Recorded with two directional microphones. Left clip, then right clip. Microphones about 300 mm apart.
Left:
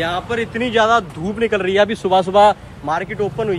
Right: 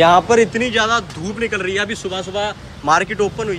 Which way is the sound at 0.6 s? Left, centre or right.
Centre.